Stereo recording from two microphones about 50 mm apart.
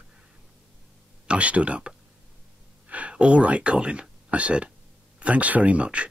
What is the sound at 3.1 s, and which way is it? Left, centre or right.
Speech, right.